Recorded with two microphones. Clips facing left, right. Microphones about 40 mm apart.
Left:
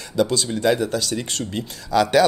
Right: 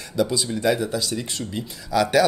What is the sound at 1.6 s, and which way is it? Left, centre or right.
Speech, left.